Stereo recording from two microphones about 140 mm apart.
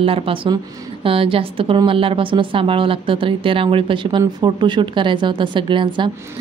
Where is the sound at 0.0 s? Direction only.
40° right (ahead or behind).